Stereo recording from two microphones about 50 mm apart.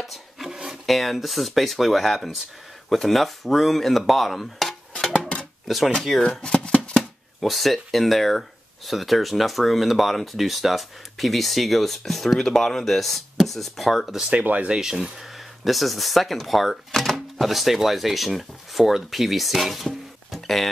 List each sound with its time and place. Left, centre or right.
0.0 s a sound: centre
0.8 s speech: centre
6.4 s shuffling cards: centre
7.0 s speech: centre
14.8 s speech: centre
20.3 s a sound: centre